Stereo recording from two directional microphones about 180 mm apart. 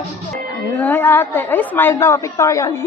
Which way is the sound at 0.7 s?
10° left (ahead or behind).